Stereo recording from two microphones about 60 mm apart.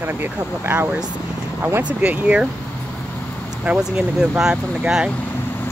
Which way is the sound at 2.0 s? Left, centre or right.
Right.